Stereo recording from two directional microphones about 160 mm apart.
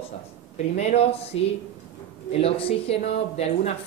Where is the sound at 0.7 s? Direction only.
40° left (ahead or behind).